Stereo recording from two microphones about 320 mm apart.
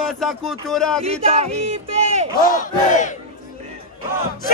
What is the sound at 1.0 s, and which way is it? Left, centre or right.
Music, centre.